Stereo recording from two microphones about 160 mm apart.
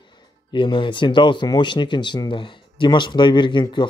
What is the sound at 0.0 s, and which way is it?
Speech, 30° left (ahead or behind).